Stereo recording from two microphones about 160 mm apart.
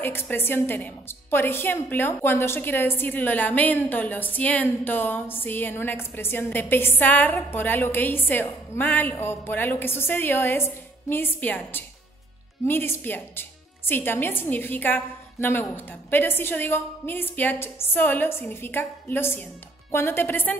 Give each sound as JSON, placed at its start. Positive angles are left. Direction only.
{"t": 0.0, "sound": "a woman's voice", "side_deg": 15}